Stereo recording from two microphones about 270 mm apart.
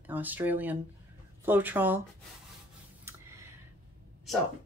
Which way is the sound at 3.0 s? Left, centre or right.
Centre.